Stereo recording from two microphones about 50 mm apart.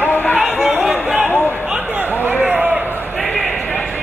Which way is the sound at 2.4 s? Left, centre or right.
Right.